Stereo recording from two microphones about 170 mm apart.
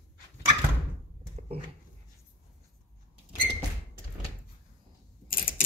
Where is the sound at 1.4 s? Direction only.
35° right (ahead or behind).